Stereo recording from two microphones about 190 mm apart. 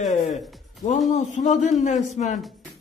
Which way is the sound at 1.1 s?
40° left (ahead or behind).